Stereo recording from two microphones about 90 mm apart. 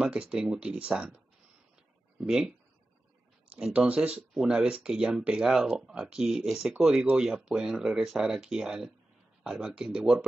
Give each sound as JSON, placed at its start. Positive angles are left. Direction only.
{"t": 0.0, "sound": "speech", "side_deg": -10}
{"t": 3.5, "sound": "speech", "side_deg": -10}